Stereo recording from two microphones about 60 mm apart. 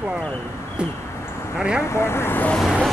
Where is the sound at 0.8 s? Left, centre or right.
Centre.